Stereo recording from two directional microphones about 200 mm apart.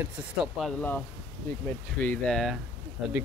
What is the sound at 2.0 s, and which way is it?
Speech, 5° left (ahead or behind).